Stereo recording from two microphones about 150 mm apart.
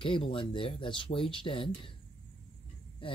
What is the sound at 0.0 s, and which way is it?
Speech, 35° left (ahead or behind).